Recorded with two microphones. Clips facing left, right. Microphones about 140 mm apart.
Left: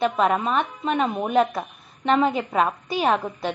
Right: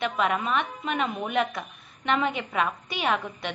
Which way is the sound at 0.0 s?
35° left (ahead or behind).